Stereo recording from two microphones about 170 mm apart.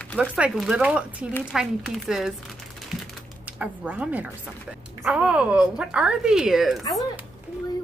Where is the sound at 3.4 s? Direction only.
5° right (ahead or behind).